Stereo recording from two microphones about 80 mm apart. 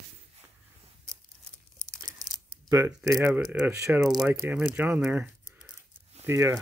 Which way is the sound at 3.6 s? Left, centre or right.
Right.